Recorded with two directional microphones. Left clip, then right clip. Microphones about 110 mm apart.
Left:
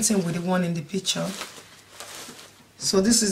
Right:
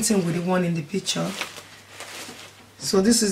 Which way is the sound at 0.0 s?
25° left (ahead or behind).